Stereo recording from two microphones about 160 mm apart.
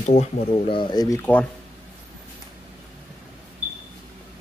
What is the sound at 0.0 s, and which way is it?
Speech, 45° left (ahead or behind).